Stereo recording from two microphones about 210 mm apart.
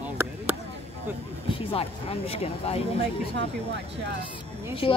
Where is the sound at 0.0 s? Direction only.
10° right (ahead or behind).